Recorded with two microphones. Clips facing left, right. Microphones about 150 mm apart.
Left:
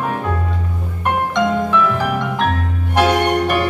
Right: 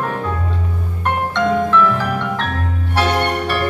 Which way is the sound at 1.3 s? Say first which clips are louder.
Right 2 dB; 15° left (ahead or behind).